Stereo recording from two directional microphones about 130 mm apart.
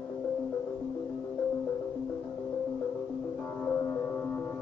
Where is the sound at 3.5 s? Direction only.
15° left (ahead or behind).